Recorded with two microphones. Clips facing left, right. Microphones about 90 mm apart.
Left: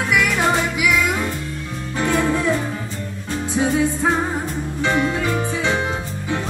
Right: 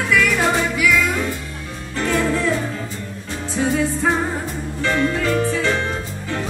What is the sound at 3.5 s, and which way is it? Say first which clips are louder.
Music: left 1 dB; 15° left (ahead or behind).